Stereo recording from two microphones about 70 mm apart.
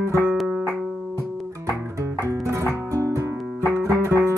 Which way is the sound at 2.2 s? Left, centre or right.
Right.